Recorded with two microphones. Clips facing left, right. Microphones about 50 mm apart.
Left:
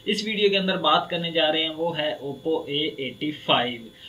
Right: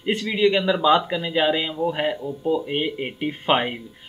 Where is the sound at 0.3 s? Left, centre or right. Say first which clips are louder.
Right 3 dB; centre.